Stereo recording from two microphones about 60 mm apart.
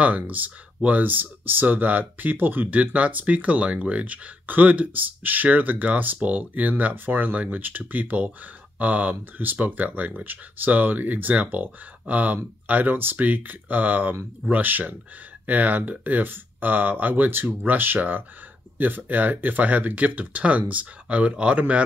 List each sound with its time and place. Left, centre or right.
0.0 s speech: right